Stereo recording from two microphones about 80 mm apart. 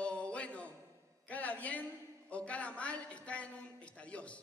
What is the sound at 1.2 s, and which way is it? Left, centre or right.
A man's voice, centre.